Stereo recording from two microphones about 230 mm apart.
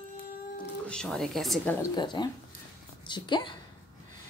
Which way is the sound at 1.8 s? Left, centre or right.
Centre.